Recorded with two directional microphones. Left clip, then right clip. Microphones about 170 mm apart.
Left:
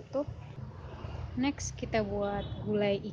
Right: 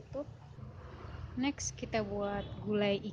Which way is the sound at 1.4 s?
10° right (ahead or behind).